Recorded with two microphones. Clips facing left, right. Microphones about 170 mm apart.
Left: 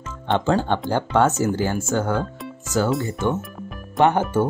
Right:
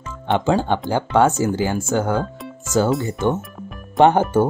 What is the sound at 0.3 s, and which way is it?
Speech, 10° right (ahead or behind).